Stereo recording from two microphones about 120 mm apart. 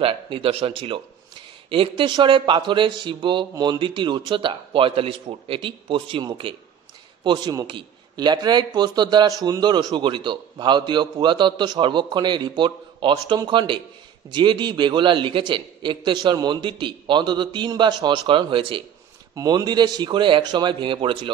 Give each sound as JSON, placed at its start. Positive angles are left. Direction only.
{"t": 0.0, "sound": "a man's voice", "side_deg": -50}
{"t": 19.3, "sound": "a man's voice", "side_deg": -30}